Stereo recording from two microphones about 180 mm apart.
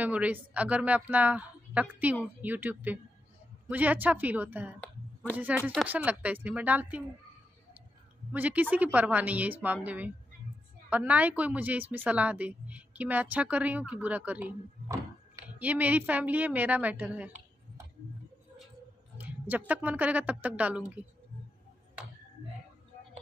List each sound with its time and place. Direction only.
0.0 s speech: 10° right (ahead or behind)
4.7 s a sound: 10° left (ahead or behind)
5.6 s speech: 5° left (ahead or behind)
5.9 s speech: 5° right (ahead or behind)
8.3 s speech: 10° right (ahead or behind)
15.6 s speech: 10° right (ahead or behind)
19.1 s a woman's voice: 10° right (ahead or behind)